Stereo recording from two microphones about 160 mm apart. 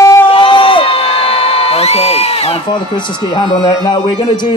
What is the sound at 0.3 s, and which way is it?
Crowd, 30° left (ahead or behind).